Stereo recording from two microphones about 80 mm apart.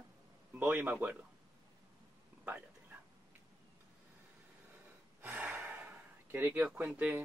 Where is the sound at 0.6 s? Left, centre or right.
Right.